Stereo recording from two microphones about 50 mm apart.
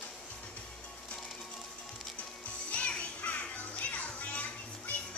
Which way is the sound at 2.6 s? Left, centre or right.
Left.